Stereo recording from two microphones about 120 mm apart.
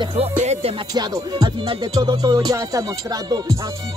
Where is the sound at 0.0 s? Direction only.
55° right (ahead or behind).